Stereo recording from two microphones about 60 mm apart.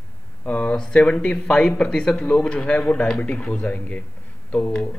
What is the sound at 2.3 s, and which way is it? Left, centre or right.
A man's voice, left.